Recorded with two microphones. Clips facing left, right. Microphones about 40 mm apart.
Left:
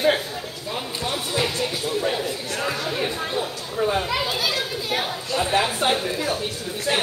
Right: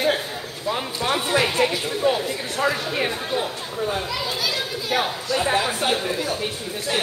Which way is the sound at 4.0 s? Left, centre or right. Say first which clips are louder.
Left 3 dB; left.